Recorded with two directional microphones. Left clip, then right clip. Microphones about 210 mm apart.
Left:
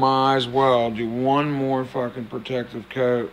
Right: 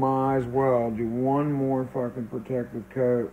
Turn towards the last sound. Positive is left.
turn(degrees=15)  # may be behind; listen again after turning